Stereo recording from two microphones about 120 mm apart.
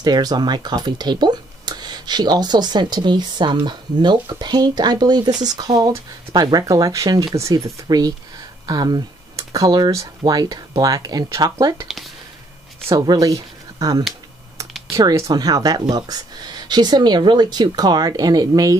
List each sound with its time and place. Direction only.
0.0 s speech: 35° right (ahead or behind)
12.9 s speech: 35° right (ahead or behind)